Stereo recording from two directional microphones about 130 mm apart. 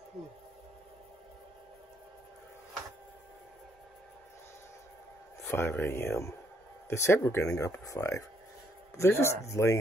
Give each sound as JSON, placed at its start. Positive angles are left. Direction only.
{"t": 5.5, "sound": "speech", "side_deg": 15}